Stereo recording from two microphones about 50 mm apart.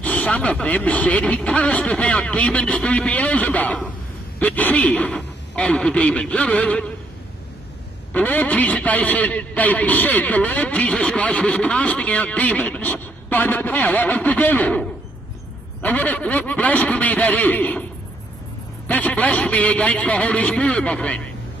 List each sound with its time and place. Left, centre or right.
0.0 s a woman's voice: left
5.1 s speech: centre
8.1 s speech: left
12.8 s speech: left
15.8 s speech: left
18.9 s speech: left